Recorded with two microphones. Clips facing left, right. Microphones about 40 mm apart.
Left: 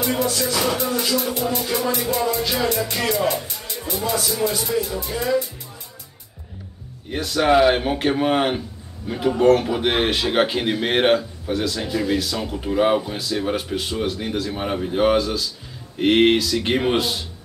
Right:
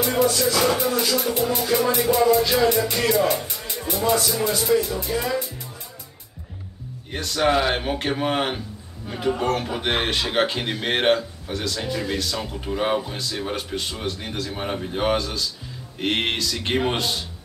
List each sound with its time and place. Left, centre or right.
0.0 s music: centre
0.3 s music: left
0.7 s music: centre
1.5 s speech: centre
7.1 s speech: centre